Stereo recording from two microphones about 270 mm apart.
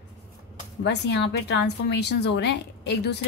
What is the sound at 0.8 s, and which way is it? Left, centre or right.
A woman's voice, left.